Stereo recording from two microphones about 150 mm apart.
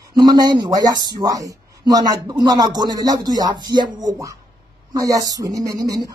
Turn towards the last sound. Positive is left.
turn(degrees=-25)  # may be behind; listen again after turning